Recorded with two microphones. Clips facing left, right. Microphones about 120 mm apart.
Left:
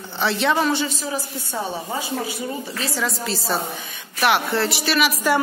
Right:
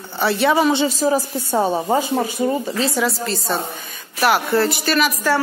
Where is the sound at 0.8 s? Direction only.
40° right (ahead or behind).